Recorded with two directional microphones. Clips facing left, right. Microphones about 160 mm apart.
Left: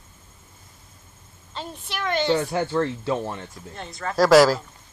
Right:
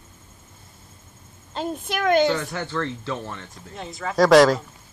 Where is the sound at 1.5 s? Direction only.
45° right (ahead or behind).